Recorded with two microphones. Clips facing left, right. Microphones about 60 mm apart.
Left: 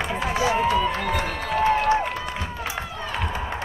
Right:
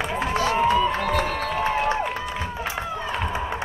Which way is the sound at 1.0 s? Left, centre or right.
Centre.